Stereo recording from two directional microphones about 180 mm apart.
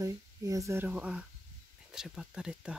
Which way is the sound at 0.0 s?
20° right (ahead or behind).